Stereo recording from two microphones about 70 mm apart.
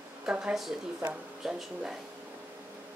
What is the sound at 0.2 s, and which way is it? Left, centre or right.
Speech, centre.